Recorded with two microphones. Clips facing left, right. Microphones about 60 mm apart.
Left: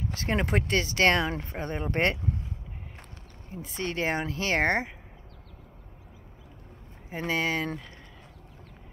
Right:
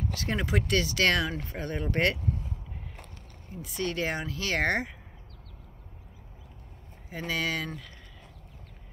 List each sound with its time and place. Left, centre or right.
0.1 s speech: left
3.6 s speech: left
7.1 s speech: left